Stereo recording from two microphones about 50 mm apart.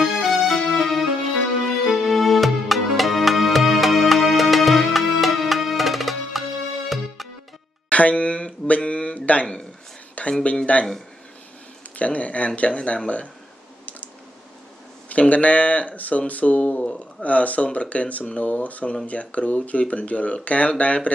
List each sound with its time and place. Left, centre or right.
0.0 s music: centre
7.9 s a sound: left
10.4 s speech: left
12.0 s speech: left
15.0 s speech: left